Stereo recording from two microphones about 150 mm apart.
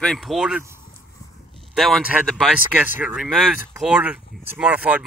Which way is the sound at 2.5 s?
10° right (ahead or behind).